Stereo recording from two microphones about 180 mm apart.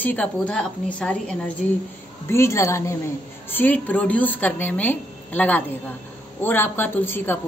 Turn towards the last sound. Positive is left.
turn(degrees=10)  # may be behind; listen again after turning